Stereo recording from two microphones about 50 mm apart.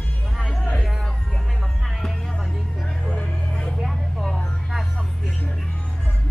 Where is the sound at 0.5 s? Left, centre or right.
Centre.